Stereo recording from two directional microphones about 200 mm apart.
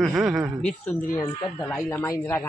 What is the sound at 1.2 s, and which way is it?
A man's voice, 15° left (ahead or behind).